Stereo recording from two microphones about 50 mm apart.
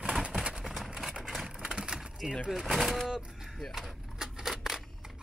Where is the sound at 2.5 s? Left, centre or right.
Centre.